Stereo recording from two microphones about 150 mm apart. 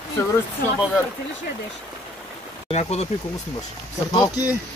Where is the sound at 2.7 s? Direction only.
45° left (ahead or behind).